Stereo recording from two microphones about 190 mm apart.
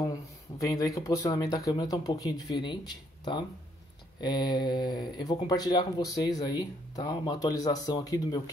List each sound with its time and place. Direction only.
0.0 s speech: 20° left (ahead or behind)